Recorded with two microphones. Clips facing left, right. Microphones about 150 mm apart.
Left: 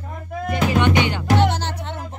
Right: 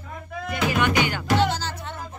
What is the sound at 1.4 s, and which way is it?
Music, 65° left (ahead or behind).